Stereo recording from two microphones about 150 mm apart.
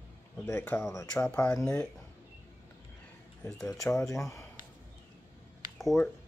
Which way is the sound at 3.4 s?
20° left (ahead or behind).